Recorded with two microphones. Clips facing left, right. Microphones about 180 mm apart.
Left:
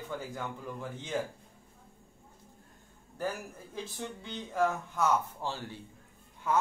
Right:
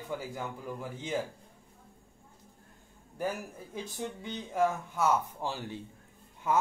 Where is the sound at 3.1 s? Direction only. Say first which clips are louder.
Right 1 dB; 15° right (ahead or behind).